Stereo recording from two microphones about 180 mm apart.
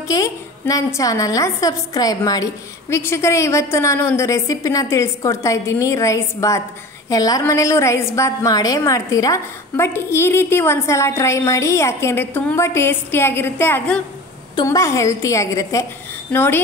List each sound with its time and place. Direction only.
0.1 s a woman's voice: 20° left (ahead or behind)
14.5 s a woman's voice: 20° left (ahead or behind)